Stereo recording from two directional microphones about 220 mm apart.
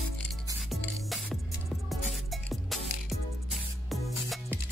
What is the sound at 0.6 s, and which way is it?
Music, centre (ahead or behind).